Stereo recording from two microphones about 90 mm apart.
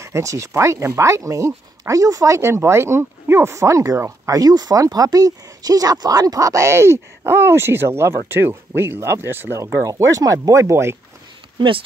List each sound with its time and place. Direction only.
0.0 s speech: 35° right (ahead or behind)
9.8 s speech: 35° right (ahead or behind)
11.5 s speech: 70° right (ahead or behind)